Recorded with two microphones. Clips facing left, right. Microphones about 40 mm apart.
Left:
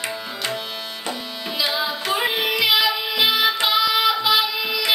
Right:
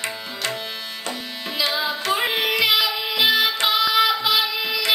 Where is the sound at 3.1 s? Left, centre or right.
Centre.